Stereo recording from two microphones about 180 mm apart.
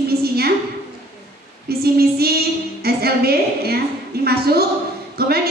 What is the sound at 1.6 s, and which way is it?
A woman's voice, 60° right (ahead or behind).